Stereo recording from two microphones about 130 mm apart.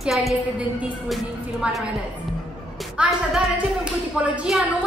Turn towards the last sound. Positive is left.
turn(degrees=-5)  # may be behind; listen again after turning